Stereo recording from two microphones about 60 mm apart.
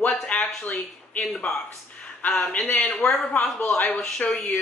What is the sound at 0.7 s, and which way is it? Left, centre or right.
Speech, left.